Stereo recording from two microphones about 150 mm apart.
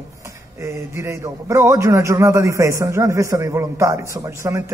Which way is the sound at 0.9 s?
20° right (ahead or behind).